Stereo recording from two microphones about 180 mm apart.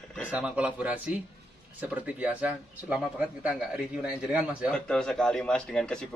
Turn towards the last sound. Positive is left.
turn(degrees=5)  # may be behind; listen again after turning